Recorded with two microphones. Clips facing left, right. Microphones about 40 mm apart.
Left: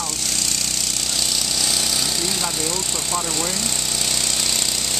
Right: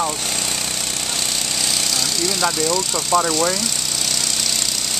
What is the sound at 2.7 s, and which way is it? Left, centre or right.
Speech, right.